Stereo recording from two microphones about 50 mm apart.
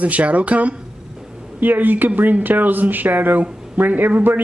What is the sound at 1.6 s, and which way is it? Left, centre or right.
Speech, right.